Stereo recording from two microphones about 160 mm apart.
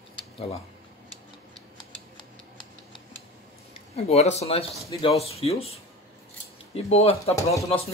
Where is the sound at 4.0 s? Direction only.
40° left (ahead or behind).